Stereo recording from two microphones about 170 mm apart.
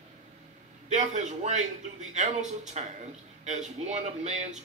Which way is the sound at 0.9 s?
45° right (ahead or behind).